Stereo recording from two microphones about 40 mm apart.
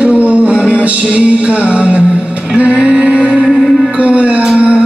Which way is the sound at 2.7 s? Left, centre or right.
Centre.